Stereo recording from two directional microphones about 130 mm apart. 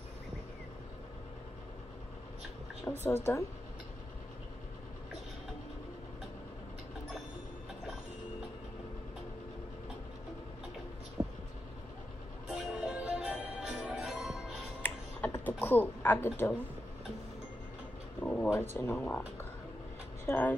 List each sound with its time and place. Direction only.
2.9 s speech: 20° left (ahead or behind)
11.2 s vehicle: 15° right (ahead or behind)
12.4 s music: 5° right (ahead or behind)
14.8 s a sound: 15° left (ahead or behind)
18.2 s a sound: 10° left (ahead or behind)
20.2 s speech: 15° left (ahead or behind)